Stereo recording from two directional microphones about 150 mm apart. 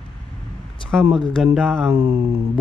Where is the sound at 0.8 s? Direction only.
35° left (ahead or behind).